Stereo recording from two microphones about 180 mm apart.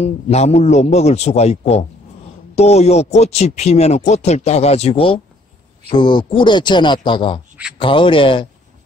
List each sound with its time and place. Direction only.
0.0 s a man's voice: 35° left (ahead or behind)